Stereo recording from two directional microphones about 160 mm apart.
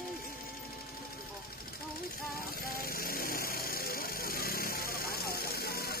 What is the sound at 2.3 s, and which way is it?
Vehicle, 65° left (ahead or behind).